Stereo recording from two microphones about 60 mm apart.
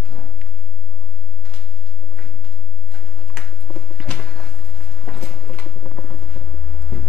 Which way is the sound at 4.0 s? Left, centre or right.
Centre.